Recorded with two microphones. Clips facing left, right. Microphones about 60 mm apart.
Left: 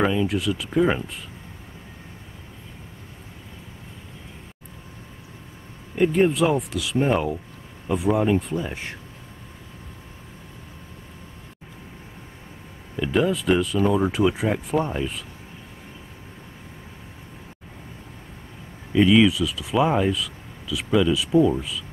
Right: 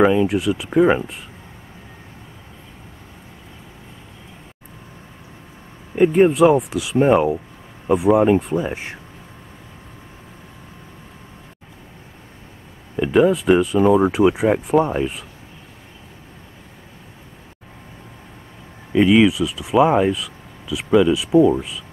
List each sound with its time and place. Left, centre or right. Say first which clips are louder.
0.0 s speech: right 6 dB; centre
5.9 s speech: right 6 dB; centre
12.9 s speech: right 7 dB; right
18.9 s speech: right 3 dB; centre